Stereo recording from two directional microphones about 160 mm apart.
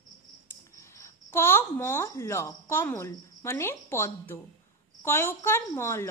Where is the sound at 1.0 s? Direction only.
15° left (ahead or behind).